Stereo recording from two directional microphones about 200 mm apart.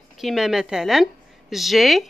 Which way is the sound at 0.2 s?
Centre (ahead or behind).